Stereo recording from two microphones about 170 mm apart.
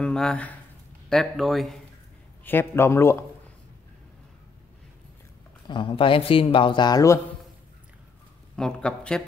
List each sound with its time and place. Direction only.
0.0 s speech: 5° left (ahead or behind)
2.4 s a man's voice: 15° left (ahead or behind)
5.7 s speech: 30° left (ahead or behind)
8.5 s speech: 5° left (ahead or behind)